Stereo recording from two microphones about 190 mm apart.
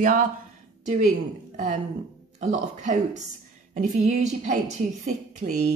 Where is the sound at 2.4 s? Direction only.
40° right (ahead or behind).